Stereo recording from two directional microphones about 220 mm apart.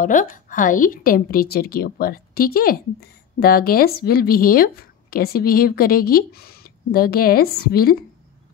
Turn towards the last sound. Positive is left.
turn(degrees=45)  # may be behind; listen again after turning